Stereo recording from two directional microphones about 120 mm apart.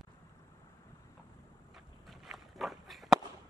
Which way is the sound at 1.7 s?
5° right (ahead or behind).